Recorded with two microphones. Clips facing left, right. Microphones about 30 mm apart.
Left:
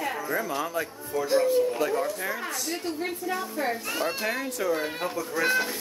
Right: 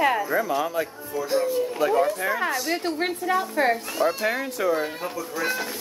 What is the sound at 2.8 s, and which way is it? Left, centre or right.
Speech, right.